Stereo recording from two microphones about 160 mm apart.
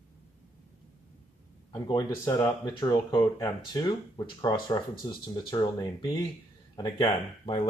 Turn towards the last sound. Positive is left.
turn(degrees=30)  # may be behind; listen again after turning